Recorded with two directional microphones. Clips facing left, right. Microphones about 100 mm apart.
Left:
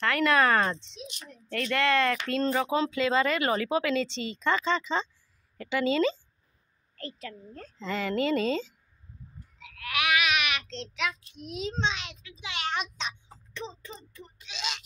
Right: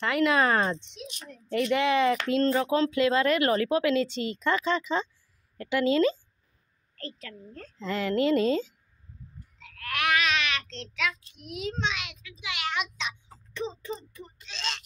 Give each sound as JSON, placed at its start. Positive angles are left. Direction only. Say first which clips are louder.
{"t": 0.0, "sound": "speech", "louder": "even", "side_deg": -15}
{"t": 2.4, "sound": "speech", "louder": "right 1 dB", "side_deg": 5}
{"t": 7.0, "sound": "a woman's voice", "louder": "left 1 dB", "side_deg": 15}
{"t": 7.8, "sound": "speech", "louder": "right 3 dB", "side_deg": -5}
{"t": 9.6, "sound": "speech", "louder": "even", "side_deg": 5}
{"t": 14.4, "sound": "a woman's voice", "louder": "even", "side_deg": 5}